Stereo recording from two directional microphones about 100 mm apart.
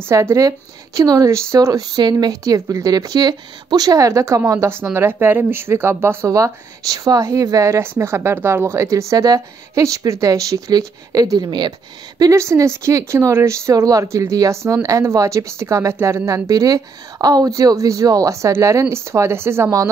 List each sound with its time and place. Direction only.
0.0 s a woman's voice: 30° right (ahead or behind); by 11.7 s 45° right (ahead or behind)
12.2 s a woman's voice: 30° right (ahead or behind)